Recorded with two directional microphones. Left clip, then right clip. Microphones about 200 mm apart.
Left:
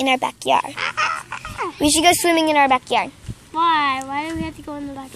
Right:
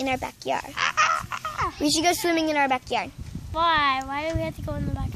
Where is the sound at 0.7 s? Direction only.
40° right (ahead or behind).